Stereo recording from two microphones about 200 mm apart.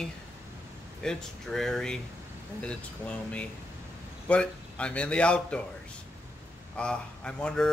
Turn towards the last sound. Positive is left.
turn(degrees=5)  # may be behind; listen again after turning